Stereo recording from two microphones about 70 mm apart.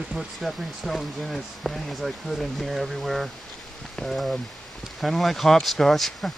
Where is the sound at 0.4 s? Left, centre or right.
Centre.